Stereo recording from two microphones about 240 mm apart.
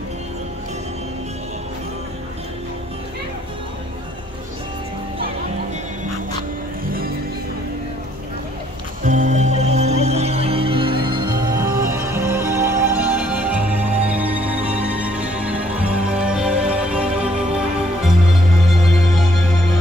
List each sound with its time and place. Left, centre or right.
9.0 s music: right; by 19.5 s centre